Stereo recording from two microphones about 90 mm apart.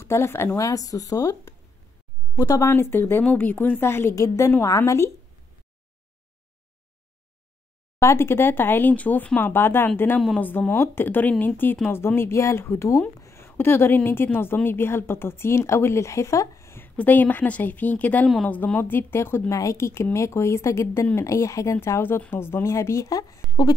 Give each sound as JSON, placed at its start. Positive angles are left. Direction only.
{"t": 0.0, "sound": "a woman's voice", "side_deg": 25}
{"t": 0.7, "sound": "speech", "side_deg": 40}
{"t": 2.3, "sound": "speech", "side_deg": 40}
{"t": 2.7, "sound": "a woman's voice", "side_deg": 25}
{"t": 8.0, "sound": "a woman's voice", "side_deg": 30}
{"t": 16.9, "sound": "a woman's voice", "side_deg": 20}
{"t": 19.5, "sound": "a woman's voice", "side_deg": 35}